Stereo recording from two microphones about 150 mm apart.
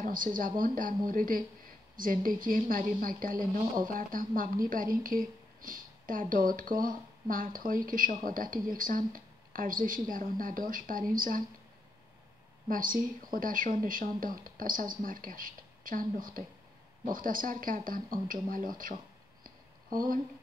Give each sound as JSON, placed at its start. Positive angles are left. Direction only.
{"t": 0.0, "sound": "speech", "side_deg": -65}
{"t": 12.6, "sound": "speech", "side_deg": -65}
{"t": 19.4, "sound": "a sound", "side_deg": -70}